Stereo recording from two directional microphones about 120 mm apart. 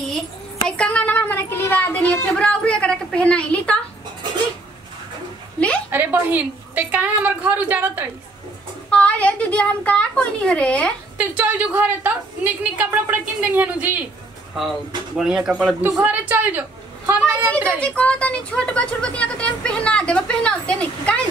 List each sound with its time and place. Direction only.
0.7 s a sound: 10° left (ahead or behind)
5.9 s a woman's voice: 15° right (ahead or behind)
8.9 s speech: 10° left (ahead or behind)
11.1 s a woman's voice: 15° right (ahead or behind)
14.5 s a woman's voice: centre (ahead or behind); by 17.7 s 20° right (ahead or behind)
17.7 s speech: 10° left (ahead or behind)